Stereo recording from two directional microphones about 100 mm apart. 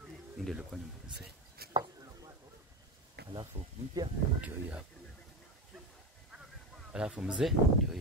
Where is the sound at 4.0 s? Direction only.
40° right (ahead or behind).